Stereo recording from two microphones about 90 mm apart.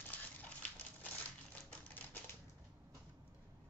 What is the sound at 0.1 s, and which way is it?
Dog, 15° left (ahead or behind).